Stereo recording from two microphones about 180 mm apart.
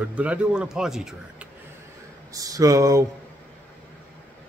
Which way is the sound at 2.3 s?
20° right (ahead or behind).